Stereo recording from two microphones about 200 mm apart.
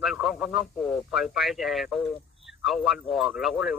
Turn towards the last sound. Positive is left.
turn(degrees=0)  # may be behind; listen again after turning